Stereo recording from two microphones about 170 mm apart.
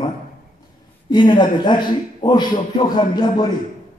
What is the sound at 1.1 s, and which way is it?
Speech, 25° left (ahead or behind).